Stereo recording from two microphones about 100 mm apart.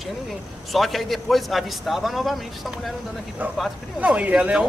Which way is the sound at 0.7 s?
Centre (ahead or behind).